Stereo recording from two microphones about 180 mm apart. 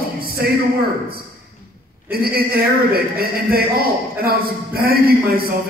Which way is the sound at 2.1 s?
55° right (ahead or behind).